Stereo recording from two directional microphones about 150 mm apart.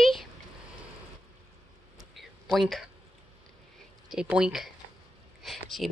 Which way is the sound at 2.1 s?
Centre (ahead or behind).